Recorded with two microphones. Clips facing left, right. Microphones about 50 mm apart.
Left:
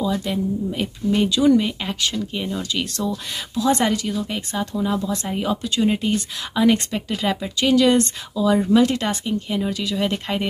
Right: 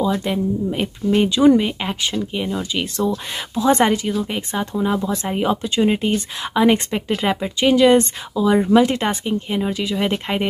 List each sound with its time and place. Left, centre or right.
0.3 s speech: right
3.5 s speech: right